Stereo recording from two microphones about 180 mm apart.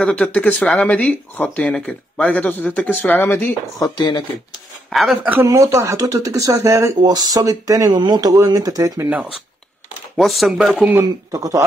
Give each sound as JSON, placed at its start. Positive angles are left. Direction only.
{"t": 0.0, "sound": "speech", "side_deg": 5}
{"t": 4.9, "sound": "speech", "side_deg": 0}
{"t": 10.1, "sound": "speech", "side_deg": 0}